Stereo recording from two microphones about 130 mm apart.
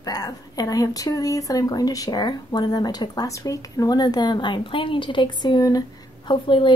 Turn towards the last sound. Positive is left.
turn(degrees=40)  # may be behind; listen again after turning